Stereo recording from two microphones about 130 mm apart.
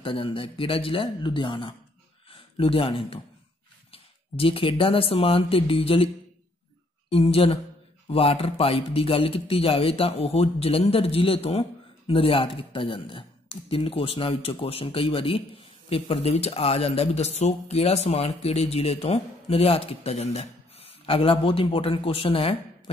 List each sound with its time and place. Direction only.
0.0 s speech: 40° left (ahead or behind)
2.2 s a sound: 45° left (ahead or behind)
3.9 s speech: 45° left (ahead or behind)
7.1 s speech: 45° left (ahead or behind)